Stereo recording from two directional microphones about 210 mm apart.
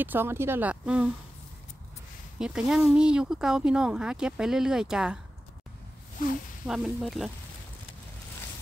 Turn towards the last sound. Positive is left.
turn(degrees=0)  # may be behind; listen again after turning